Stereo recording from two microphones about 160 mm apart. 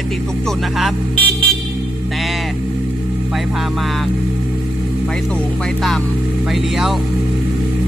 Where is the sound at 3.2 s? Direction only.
Centre (ahead or behind).